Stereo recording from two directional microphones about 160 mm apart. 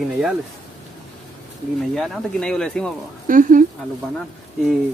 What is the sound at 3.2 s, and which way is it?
Speech, 55° right (ahead or behind).